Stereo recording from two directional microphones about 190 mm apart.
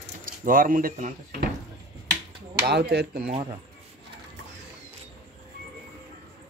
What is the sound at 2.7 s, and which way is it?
Speech, 60° right (ahead or behind).